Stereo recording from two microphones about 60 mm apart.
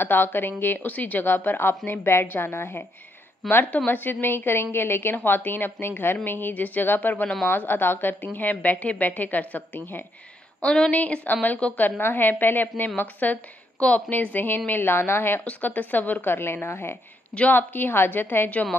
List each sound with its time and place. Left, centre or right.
0.0 s a woman's voice: left
10.6 s a woman's voice: centre; by 15.4 s left
15.4 s a woman's voice: left
17.3 s a woman's voice: left
17.6 s a woman's voice: left
18.5 s a woman's voice: left